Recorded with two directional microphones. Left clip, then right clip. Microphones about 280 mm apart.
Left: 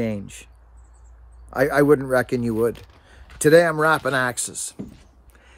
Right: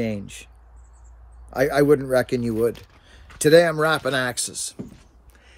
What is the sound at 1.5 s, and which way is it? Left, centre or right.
Speech, centre.